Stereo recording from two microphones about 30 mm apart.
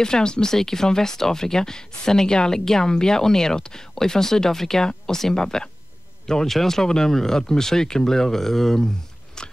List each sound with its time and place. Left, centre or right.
0.0 s speech: left